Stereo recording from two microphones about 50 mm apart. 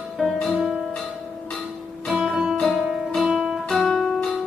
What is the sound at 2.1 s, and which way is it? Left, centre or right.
Music, centre.